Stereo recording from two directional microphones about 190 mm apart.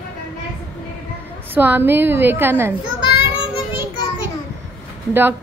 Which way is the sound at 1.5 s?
10° right (ahead or behind).